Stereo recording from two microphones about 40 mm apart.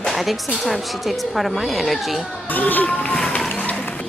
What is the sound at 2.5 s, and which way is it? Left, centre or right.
Speech, left.